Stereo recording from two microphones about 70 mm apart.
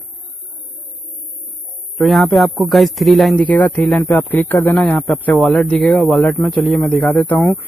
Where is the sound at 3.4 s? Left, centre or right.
Left.